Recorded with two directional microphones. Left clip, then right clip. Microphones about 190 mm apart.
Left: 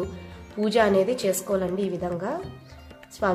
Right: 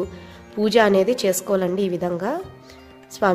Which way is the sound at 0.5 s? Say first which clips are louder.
Right 4 dB; 45° right (ahead or behind).